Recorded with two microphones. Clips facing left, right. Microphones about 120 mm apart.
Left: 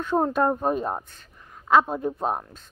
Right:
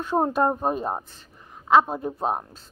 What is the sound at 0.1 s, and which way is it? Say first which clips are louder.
A woman's voice: even; 10° right (ahead or behind).